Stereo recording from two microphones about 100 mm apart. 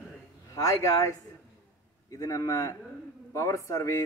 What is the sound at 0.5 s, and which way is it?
Speech, 30° left (ahead or behind).